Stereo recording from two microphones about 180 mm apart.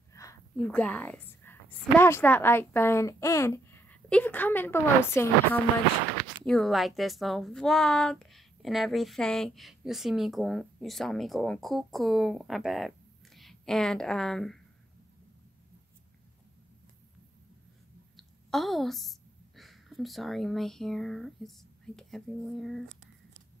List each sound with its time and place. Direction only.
0.1 s a sound: 20° left (ahead or behind)
0.6 s a woman's voice: 5° left (ahead or behind)
6.1 s a woman's voice: centre (ahead or behind)
18.1 s a woman's voice: centre (ahead or behind)